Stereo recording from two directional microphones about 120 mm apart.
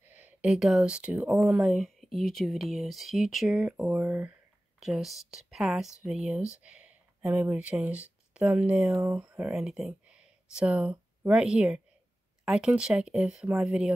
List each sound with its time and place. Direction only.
0.1 s speech: 15° right (ahead or behind)
4.7 s speech: centre (ahead or behind)